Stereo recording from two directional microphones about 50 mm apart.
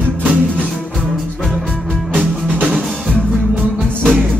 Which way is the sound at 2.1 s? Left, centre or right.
Right.